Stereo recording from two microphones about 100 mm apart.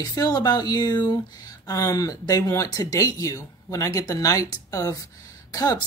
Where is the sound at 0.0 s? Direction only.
40° left (ahead or behind).